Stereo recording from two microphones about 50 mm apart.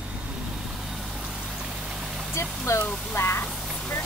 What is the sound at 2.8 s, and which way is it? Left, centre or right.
Speech, left.